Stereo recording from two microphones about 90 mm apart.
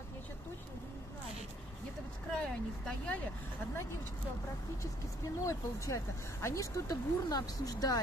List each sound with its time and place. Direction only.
2.3 s speech: 10° left (ahead or behind)
5.4 s speech: 35° left (ahead or behind)